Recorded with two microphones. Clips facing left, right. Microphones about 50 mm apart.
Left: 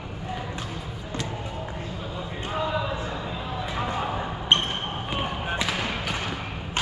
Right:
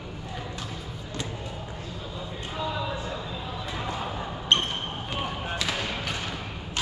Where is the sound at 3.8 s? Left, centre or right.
Left.